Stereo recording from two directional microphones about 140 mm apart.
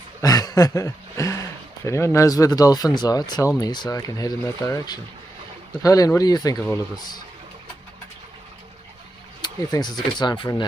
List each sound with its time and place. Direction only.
0.2 s a sound: 25° left (ahead or behind)
1.9 s speech: 20° left (ahead or behind)
9.4 s speech: 30° left (ahead or behind)